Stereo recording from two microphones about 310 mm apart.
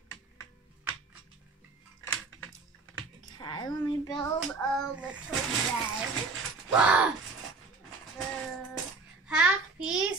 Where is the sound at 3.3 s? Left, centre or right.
Centre.